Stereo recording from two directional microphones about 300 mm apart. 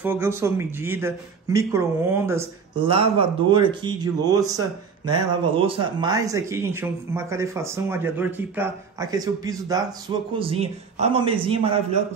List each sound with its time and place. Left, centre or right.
0.0 s a man's voice: centre